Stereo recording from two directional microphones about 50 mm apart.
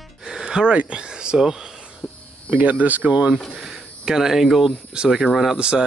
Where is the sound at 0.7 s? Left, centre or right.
Centre.